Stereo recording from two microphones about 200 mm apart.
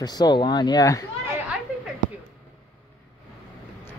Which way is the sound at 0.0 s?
20° left (ahead or behind).